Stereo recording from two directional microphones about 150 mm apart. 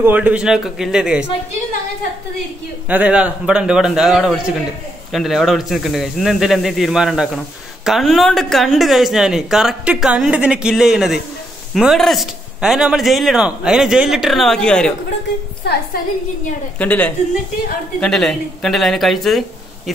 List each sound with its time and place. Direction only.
0.0 s a woman's voice: 10° right (ahead or behind)
2.9 s a woman's voice: 10° right (ahead or behind)
15.6 s a woman's voice: 90° left
16.7 s a woman's voice: 10° left (ahead or behind)